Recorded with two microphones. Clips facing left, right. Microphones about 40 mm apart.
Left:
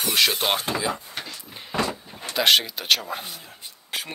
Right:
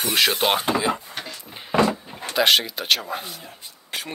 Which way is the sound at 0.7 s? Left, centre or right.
Right.